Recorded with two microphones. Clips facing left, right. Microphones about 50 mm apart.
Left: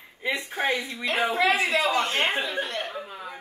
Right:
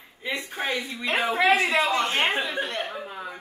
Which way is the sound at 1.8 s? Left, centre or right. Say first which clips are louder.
Even; centre.